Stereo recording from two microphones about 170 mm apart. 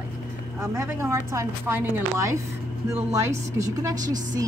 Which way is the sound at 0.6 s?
15° right (ahead or behind).